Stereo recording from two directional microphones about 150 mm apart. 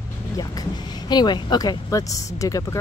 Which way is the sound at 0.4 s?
30° left (ahead or behind).